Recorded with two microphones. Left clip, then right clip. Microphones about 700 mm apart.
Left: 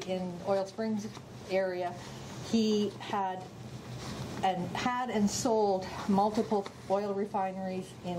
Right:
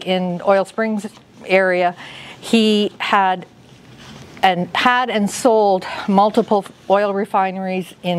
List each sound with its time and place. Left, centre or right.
0.1 s a woman's voice: right
4.4 s a woman's voice: right